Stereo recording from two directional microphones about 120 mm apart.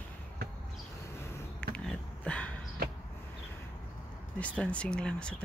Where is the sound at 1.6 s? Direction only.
10° left (ahead or behind).